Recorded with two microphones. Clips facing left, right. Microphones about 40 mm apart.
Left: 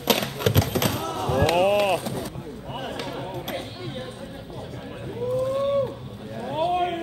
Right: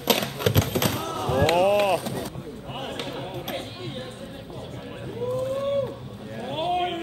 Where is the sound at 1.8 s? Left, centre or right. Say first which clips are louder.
Even; left.